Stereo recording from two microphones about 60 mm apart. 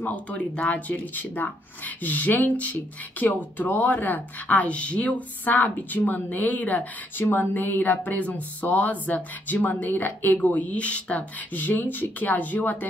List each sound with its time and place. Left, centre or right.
0.0 s speech: left